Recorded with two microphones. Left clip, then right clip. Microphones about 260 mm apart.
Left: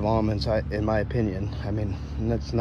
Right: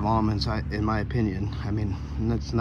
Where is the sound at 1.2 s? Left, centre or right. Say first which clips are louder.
Left 1 dB; centre.